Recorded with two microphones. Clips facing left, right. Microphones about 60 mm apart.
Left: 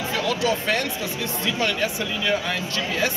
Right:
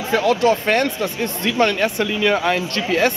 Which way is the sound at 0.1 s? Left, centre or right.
Right.